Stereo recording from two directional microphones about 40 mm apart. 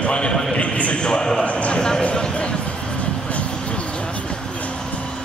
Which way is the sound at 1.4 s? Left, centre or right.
Left.